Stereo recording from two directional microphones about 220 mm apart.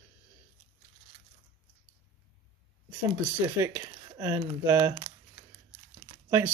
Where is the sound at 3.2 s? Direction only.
10° right (ahead or behind).